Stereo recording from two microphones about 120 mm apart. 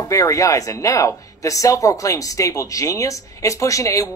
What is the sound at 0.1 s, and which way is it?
Speech, 25° left (ahead or behind).